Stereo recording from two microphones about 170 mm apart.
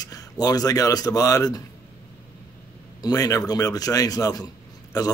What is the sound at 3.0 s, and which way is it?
A man's voice, 20° left (ahead or behind).